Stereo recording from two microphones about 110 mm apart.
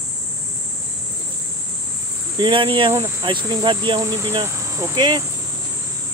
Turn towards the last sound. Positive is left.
turn(degrees=-40)  # may be behind; listen again after turning